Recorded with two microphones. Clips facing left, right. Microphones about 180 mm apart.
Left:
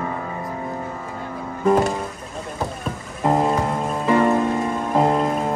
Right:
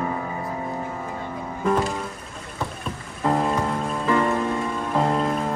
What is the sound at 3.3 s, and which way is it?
Music, 25° left (ahead or behind).